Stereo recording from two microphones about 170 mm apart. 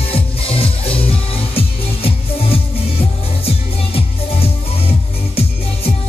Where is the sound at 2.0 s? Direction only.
35° left (ahead or behind).